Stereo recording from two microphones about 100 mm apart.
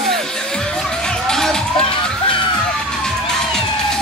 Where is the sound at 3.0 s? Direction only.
5° left (ahead or behind).